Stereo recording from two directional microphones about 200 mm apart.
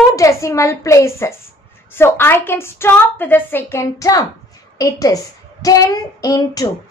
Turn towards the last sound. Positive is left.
turn(degrees=15)  # may be behind; listen again after turning